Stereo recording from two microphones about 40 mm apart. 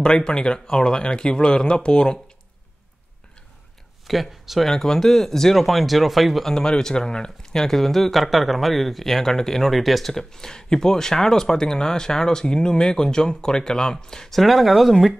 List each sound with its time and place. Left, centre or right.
0.0 s speech: centre
4.1 s speech: centre
4.6 s speech: centre
6.5 s speech: centre
14.3 s speech: centre